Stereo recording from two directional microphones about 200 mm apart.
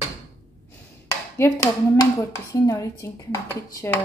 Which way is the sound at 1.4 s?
15° left (ahead or behind).